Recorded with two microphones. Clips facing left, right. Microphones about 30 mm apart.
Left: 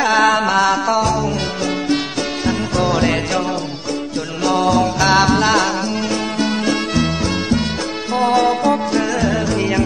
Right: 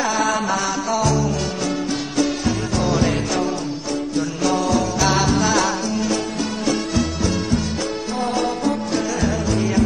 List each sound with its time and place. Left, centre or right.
0.0 s music: left
0.9 s music: left
1.9 s music: left